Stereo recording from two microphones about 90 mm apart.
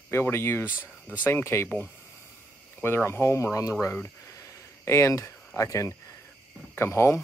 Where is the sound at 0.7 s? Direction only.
15° right (ahead or behind).